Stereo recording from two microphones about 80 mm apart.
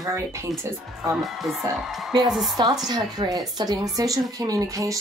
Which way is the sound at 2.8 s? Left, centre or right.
Right.